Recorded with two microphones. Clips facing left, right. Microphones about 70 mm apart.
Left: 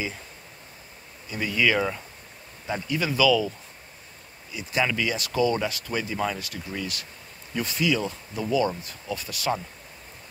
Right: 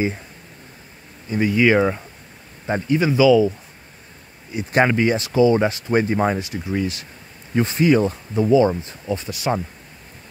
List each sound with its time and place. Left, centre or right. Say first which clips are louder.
1.3 s speech: right 8 dB; right
4.5 s speech: right 8 dB; right
5.3 s speech: right 7 dB; right
6.0 s speech: right 8 dB; right
6.4 s speech: right 9 dB; right